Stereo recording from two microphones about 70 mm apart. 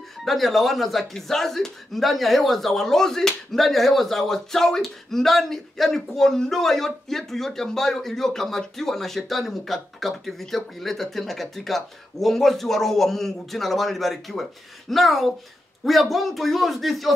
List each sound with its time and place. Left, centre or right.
0.2 s speech: centre